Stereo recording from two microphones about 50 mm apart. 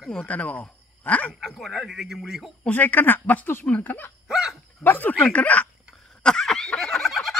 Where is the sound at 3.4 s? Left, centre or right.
Left.